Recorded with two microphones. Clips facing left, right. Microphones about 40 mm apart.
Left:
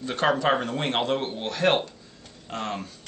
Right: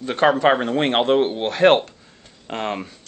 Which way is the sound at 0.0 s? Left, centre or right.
Right.